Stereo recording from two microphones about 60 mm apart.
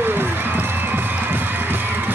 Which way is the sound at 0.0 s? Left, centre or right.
Right.